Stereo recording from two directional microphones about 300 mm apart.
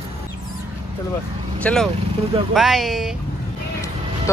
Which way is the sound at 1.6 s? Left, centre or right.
Centre.